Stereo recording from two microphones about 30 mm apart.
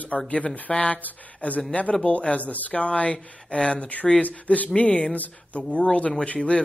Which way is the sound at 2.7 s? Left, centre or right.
Left.